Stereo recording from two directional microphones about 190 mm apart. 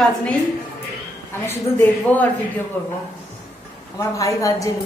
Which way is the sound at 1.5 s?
10° left (ahead or behind).